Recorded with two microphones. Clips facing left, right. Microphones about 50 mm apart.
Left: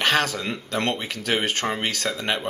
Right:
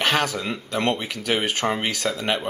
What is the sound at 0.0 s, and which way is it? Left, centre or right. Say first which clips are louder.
Speech: even; centre.